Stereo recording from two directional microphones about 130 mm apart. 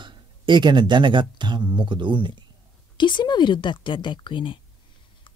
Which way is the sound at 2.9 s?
35° left (ahead or behind).